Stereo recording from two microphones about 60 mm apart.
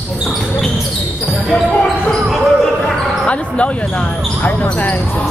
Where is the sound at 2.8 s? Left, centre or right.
Centre.